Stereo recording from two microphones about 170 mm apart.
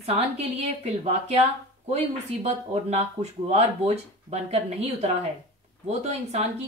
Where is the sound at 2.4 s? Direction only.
40° right (ahead or behind).